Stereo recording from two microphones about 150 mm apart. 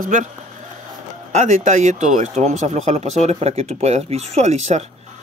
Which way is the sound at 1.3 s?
55° right (ahead or behind).